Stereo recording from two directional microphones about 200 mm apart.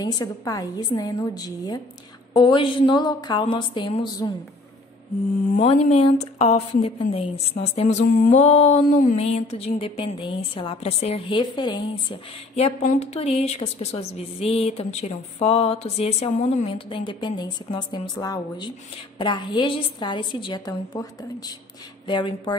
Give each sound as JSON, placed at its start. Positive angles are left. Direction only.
{"t": 0.0, "sound": "a woman's voice", "side_deg": 20}
{"t": 5.6, "sound": "a sound", "side_deg": 30}
{"t": 19.1, "sound": "a woman's voice", "side_deg": 25}